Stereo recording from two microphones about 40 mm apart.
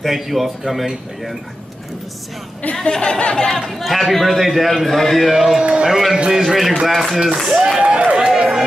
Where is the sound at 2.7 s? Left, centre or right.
Left.